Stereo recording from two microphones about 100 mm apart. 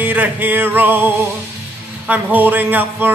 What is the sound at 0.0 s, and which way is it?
Music, 20° right (ahead or behind).